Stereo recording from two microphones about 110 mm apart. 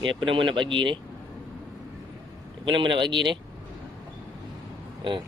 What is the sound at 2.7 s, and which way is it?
Speech, 45° right (ahead or behind).